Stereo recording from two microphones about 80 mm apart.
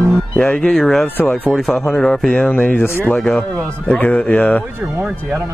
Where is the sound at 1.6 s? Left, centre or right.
Centre; by 3.1 s left.